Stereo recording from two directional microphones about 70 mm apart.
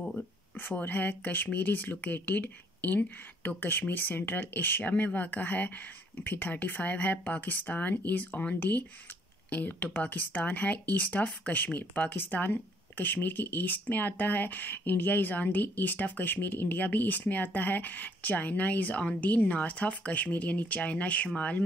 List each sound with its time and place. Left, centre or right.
0.6 s speech: left